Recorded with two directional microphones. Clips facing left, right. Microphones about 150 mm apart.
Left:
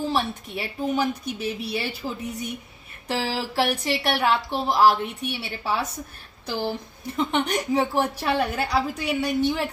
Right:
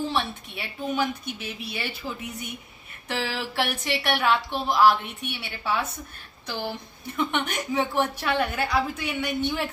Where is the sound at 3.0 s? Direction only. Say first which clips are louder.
Left 3 dB; 35° left (ahead or behind).